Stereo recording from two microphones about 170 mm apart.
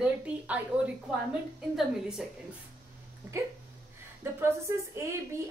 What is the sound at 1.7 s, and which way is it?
Speech, 5° right (ahead or behind).